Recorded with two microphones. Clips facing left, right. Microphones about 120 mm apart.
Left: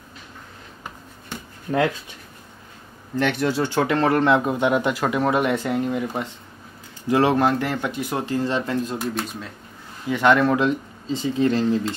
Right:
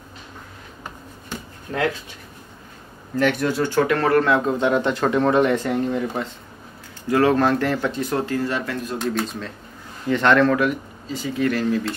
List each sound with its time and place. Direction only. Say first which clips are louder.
3.2 s speech: right 1 dB; 20° left (ahead or behind)
8.9 s speech: right 3 dB; 5° left (ahead or behind)
10.6 s speech: even; 25° left (ahead or behind)